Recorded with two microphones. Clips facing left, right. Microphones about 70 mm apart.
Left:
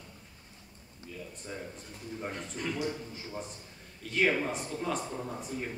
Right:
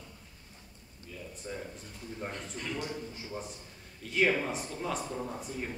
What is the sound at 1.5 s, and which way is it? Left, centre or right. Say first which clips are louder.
Speech: right 2 dB; centre.